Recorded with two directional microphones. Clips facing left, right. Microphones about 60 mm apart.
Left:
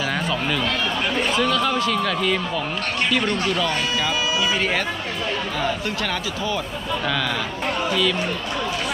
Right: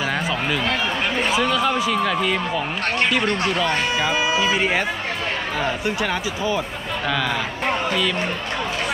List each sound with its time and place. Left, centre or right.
0.0 s speech: centre; by 4.6 s right
4.6 s speech: centre